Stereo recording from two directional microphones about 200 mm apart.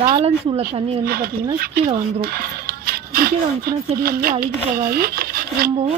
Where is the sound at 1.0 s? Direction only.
50° right (ahead or behind).